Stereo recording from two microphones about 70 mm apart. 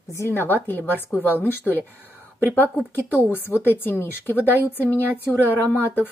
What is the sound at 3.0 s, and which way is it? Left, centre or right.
A woman's voice, left.